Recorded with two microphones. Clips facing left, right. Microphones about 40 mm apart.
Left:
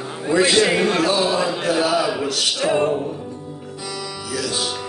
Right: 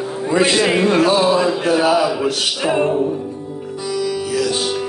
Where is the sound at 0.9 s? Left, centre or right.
Right.